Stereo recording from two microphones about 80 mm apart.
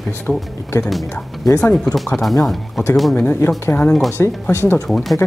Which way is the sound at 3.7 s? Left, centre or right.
Centre.